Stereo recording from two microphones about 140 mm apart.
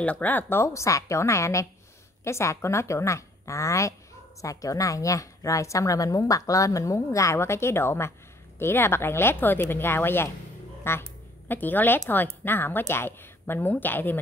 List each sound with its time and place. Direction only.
0.0 s a woman's voice: 10° left (ahead or behind)